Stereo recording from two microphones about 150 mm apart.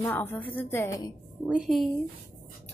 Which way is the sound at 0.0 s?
15° left (ahead or behind).